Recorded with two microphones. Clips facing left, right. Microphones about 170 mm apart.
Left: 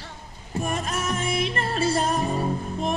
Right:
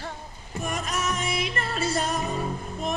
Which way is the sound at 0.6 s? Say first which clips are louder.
Left 1 dB; 30° left (ahead or behind).